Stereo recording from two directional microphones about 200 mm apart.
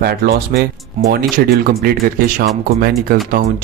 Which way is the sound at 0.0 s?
50° right (ahead or behind).